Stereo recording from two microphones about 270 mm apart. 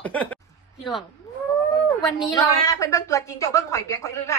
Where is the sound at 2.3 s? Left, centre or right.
Centre.